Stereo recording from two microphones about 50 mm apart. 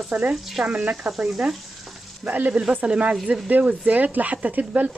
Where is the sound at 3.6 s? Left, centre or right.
Right.